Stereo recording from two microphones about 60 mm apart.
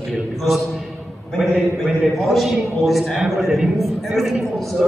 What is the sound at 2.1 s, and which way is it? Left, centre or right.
A man's voice, centre.